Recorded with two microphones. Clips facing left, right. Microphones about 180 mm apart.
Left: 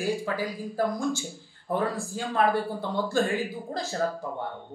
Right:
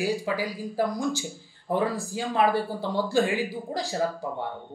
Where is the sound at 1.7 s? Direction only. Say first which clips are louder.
Right 2 dB; 10° right (ahead or behind).